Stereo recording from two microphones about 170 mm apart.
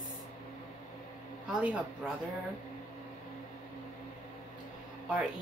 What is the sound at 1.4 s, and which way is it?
Speech, 5° right (ahead or behind).